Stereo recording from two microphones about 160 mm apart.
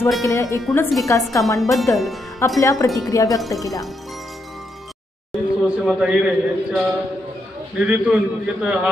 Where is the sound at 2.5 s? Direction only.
20° left (ahead or behind).